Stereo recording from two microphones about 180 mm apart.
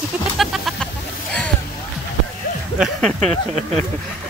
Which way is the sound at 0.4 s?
Centre (ahead or behind).